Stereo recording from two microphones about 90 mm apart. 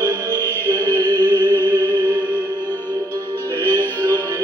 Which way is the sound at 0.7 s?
35° right (ahead or behind).